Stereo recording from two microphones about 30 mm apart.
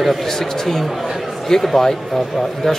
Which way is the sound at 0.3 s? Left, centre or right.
Centre.